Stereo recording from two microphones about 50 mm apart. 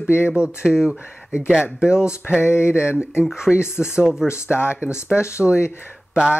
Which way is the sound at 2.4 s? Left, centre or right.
Left.